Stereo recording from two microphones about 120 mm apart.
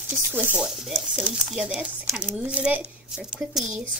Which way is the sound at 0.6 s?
Centre (ahead or behind).